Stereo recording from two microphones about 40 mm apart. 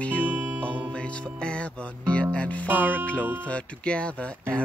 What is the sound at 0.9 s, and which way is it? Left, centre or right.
Music, left.